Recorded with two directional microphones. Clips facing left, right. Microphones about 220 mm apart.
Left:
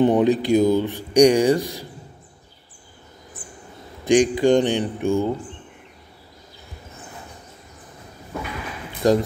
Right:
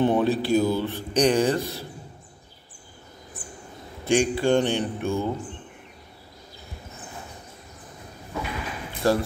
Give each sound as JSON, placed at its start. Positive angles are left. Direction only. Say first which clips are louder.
{"t": 0.0, "sound": "speech", "louder": "left 4 dB", "side_deg": 15}
{"t": 4.0, "sound": "speech", "louder": "left 5 dB", "side_deg": 15}
{"t": 9.0, "sound": "speech", "louder": "left 4 dB", "side_deg": 15}